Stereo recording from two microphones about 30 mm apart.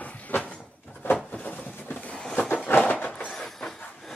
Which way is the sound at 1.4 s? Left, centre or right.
Left.